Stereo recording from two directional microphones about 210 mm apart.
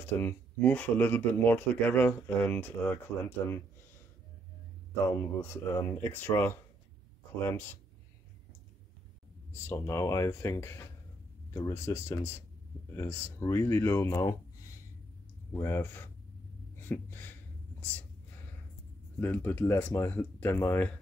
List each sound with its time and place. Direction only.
0.0 s speech: 10° left (ahead or behind)
5.0 s speech: 10° left (ahead or behind)
9.7 s speech: 15° left (ahead or behind)
15.5 s speech: 10° left (ahead or behind)
16.8 s a sound: 10° left (ahead or behind)
19.1 s speech: 10° left (ahead or behind)